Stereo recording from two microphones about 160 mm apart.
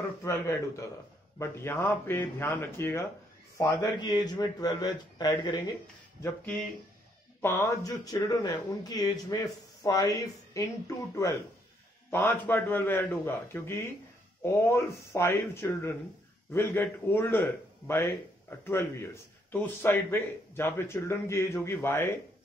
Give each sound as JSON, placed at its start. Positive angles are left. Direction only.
{"t": 0.2, "sound": "speech", "side_deg": 20}
{"t": 6.2, "sound": "speech", "side_deg": 10}